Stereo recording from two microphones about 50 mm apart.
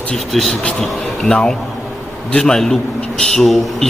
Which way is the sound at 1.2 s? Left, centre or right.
Centre.